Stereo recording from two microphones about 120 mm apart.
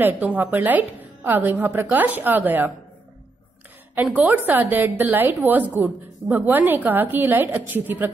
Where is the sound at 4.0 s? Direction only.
15° right (ahead or behind).